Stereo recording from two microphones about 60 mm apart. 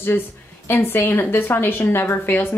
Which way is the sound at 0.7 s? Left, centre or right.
Left.